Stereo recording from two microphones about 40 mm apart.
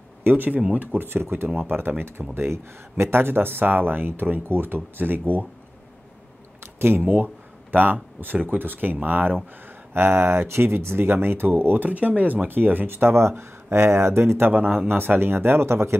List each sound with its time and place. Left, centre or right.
0.2 s speech: right
0.9 s speech: right
2.3 s speech: right
6.6 s speech: right
9.9 s speech: right
14.9 s speech: right